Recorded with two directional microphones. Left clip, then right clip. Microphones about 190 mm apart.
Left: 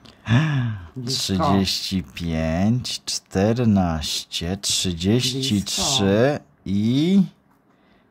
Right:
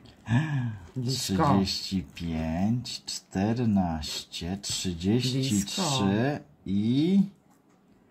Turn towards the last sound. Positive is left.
turn(degrees=40)  # may be behind; listen again after turning